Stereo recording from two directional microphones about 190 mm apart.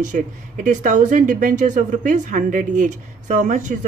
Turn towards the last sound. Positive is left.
turn(degrees=-40)  # may be behind; listen again after turning